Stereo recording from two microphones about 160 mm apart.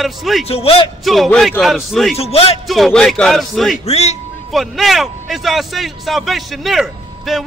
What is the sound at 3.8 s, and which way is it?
Speech, 40° left (ahead or behind).